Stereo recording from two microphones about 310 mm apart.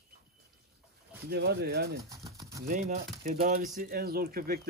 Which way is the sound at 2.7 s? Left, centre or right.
Right.